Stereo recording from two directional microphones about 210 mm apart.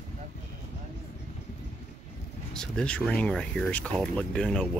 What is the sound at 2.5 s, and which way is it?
Speech, 5° left (ahead or behind).